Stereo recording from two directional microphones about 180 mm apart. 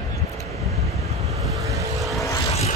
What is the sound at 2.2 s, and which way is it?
Vehicle, 20° left (ahead or behind).